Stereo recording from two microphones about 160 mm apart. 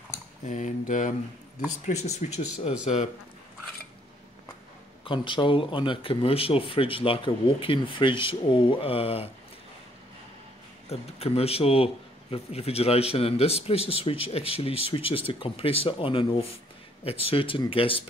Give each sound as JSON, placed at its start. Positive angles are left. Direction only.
{"t": 0.5, "sound": "speech", "side_deg": 50}
{"t": 5.0, "sound": "speech", "side_deg": 30}
{"t": 10.9, "sound": "speech", "side_deg": 40}